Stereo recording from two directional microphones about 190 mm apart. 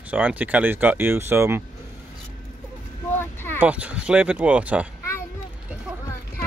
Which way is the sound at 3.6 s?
5° right (ahead or behind).